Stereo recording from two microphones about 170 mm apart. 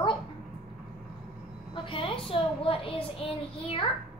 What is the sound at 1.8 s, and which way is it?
A child's voice, 30° left (ahead or behind).